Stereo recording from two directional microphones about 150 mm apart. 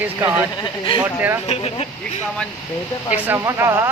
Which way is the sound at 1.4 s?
45° left (ahead or behind).